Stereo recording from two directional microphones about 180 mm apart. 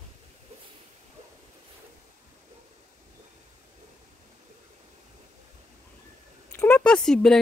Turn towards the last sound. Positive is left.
turn(degrees=5)  # may be behind; listen again after turning